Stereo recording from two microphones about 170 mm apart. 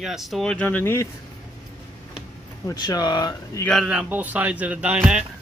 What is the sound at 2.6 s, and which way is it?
Speech, 25° left (ahead or behind).